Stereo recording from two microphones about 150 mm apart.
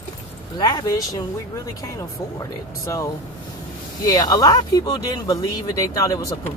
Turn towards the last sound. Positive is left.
turn(degrees=20)  # may be behind; listen again after turning